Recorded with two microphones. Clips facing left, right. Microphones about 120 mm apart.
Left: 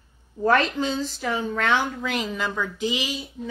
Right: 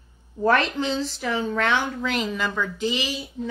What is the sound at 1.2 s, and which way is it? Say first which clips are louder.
Speech: right 1 dB; 15° left (ahead or behind).